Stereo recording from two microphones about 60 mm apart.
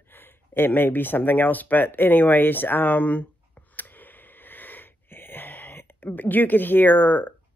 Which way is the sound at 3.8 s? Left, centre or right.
Left.